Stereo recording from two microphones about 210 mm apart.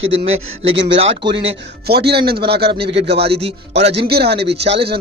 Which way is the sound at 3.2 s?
30° right (ahead or behind).